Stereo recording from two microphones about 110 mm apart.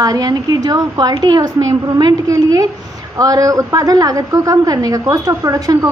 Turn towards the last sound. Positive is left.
turn(degrees=-30)  # may be behind; listen again after turning